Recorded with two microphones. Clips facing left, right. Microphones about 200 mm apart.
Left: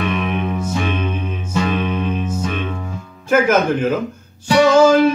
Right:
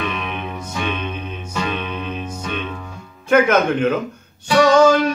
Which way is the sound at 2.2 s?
5° left (ahead or behind).